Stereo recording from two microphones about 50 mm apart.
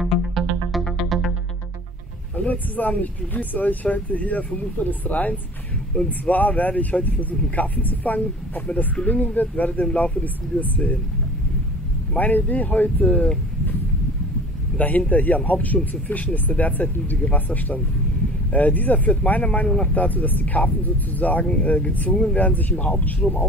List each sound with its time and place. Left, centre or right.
0.0 s music: centre
2.3 s speech: left
12.2 s speech: left
14.8 s speech: left
22.1 s speech: centre
22.4 s speech: left